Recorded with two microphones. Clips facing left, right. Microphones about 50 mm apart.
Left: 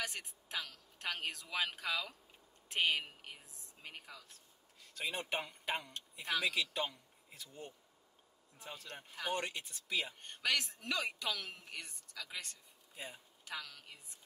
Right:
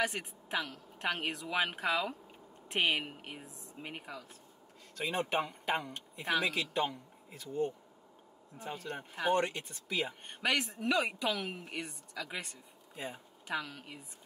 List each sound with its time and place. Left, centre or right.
0.0 s speech: right
8.5 s speech: right